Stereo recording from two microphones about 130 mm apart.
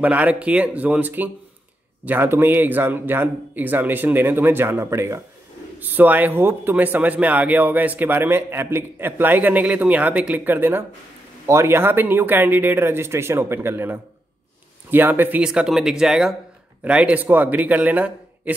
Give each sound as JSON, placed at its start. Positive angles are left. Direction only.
{"t": 0.0, "sound": "a man's voice", "side_deg": -10}